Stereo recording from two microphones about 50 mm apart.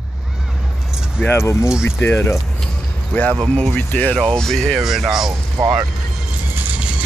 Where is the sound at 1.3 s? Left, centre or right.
Left.